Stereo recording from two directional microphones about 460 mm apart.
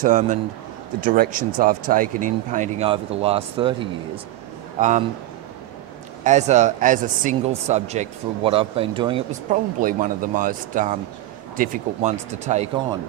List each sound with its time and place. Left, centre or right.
0.0 s speech: centre
6.2 s speech: centre